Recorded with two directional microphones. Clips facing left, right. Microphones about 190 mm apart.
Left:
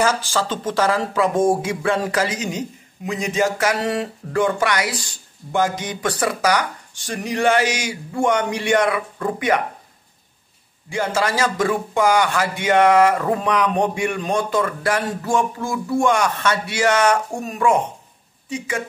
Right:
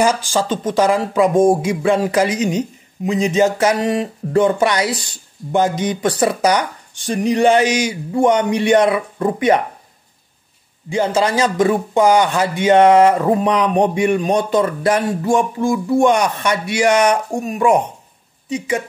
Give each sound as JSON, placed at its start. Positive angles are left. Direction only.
{"t": 0.0, "sound": "speech", "side_deg": -15}
{"t": 10.9, "sound": "speech", "side_deg": -20}